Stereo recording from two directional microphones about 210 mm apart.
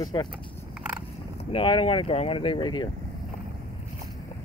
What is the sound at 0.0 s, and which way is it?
Speech, 20° left (ahead or behind).